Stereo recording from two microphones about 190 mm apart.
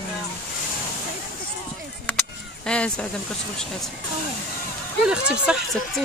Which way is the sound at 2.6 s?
5° left (ahead or behind).